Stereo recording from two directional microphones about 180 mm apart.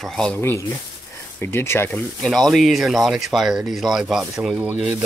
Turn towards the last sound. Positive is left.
turn(degrees=-5)  # may be behind; listen again after turning